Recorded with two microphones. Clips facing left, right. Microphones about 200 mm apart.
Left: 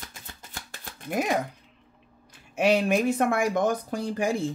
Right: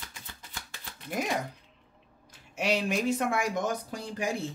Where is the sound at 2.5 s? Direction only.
55° left (ahead or behind).